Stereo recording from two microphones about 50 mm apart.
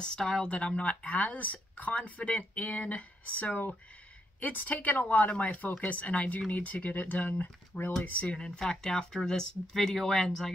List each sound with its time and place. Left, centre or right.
0.0 s speech: centre; by 7.9 s left
8.0 s speech: left
8.4 s speech: centre